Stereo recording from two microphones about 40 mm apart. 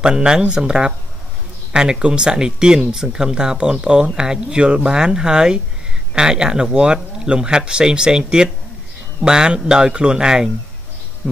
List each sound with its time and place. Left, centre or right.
0.0 s speech: centre